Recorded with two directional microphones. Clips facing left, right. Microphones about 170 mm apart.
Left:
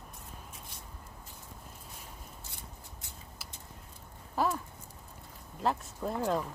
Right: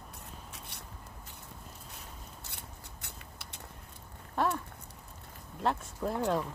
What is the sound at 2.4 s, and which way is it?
Scissors, 65° right (ahead or behind).